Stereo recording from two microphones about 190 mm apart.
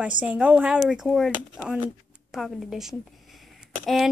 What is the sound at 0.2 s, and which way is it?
A woman's voice, 5° right (ahead or behind).